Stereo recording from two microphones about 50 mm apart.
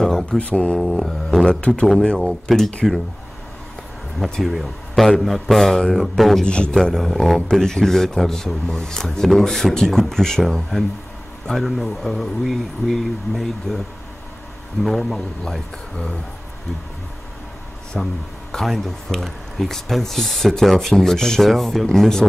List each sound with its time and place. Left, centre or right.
0.0 s a sound: centre
0.4 s speech: left
0.7 s speech: centre
1.4 s speech: centre
4.2 s speech: centre
6.4 s speech: left
6.7 s speech: centre
14.8 s speech: centre
17.9 s speech: centre